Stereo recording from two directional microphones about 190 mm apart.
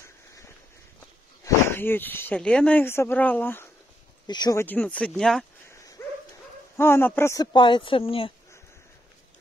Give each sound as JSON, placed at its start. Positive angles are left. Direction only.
{"t": 1.4, "sound": "speech", "side_deg": 10}
{"t": 6.0, "sound": "dog", "side_deg": 15}
{"t": 6.8, "sound": "speech", "side_deg": 10}
{"t": 7.5, "sound": "speech", "side_deg": 25}